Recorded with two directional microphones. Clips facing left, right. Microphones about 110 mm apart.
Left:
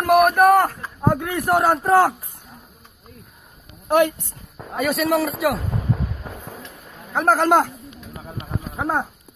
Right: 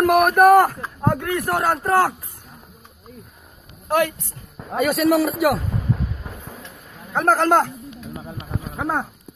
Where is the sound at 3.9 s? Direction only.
20° left (ahead or behind).